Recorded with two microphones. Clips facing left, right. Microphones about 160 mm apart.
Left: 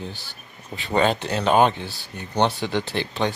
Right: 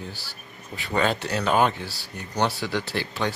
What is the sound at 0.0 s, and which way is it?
Speech, 20° left (ahead or behind).